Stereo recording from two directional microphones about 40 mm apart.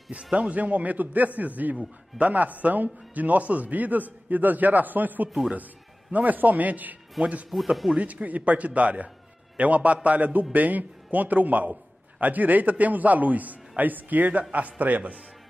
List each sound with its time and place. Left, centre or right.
0.1 s speech: right
0.6 s a man's voice: right
7.6 s speech: centre
7.9 s a man's voice: right